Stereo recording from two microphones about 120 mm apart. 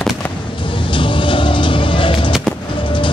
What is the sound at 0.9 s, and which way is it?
Vehicle, 45° left (ahead or behind).